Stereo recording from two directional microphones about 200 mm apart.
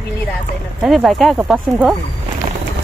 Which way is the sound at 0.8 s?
Centre (ahead or behind).